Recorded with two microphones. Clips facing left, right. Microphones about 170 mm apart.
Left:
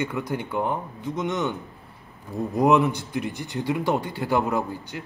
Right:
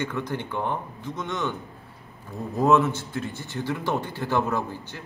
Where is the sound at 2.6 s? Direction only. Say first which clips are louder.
Left 1 dB; 15° left (ahead or behind).